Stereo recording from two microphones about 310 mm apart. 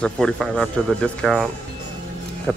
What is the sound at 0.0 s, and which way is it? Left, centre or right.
Speech, centre.